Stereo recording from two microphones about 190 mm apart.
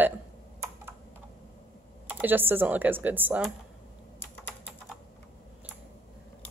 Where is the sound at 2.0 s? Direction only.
10° right (ahead or behind).